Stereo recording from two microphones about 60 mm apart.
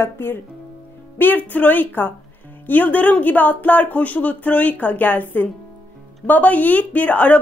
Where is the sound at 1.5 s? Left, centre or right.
Left.